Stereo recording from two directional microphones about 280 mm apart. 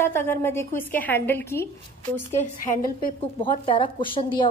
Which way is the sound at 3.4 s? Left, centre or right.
Centre.